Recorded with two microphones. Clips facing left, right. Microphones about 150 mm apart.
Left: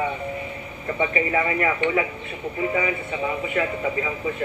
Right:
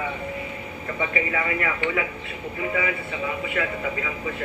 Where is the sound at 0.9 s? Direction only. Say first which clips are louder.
Left 4 dB; 30° left (ahead or behind).